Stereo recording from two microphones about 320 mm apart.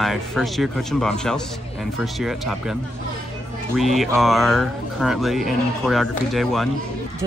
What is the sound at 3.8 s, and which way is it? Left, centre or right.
Speech, centre.